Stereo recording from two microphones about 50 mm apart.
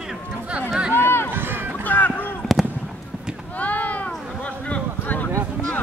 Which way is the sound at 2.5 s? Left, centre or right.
Centre.